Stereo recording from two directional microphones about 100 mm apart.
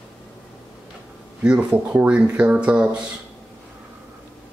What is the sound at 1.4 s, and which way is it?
Speech, 10° right (ahead or behind).